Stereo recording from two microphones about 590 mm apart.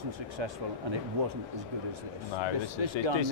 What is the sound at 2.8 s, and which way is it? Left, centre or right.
Speech, right.